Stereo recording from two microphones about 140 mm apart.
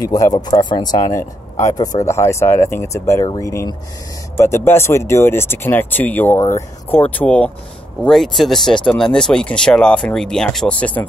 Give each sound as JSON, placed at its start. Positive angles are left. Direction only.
{"t": 0.0, "sound": "speech", "side_deg": 25}